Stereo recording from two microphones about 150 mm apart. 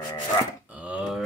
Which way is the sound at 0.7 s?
5° right (ahead or behind).